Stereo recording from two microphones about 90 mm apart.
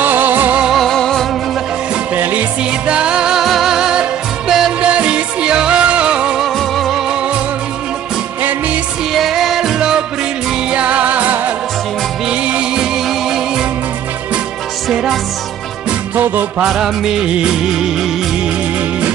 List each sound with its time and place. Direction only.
0.0 s music: 20° right (ahead or behind)
0.7 s music: centre (ahead or behind)
2.1 s music: 20° right (ahead or behind)
2.9 s music: 10° right (ahead or behind)
8.4 s music: 20° right (ahead or behind)
9.1 s music: centre (ahead or behind)
16.2 s music: 20° right (ahead or behind)
16.6 s music: 5° right (ahead or behind)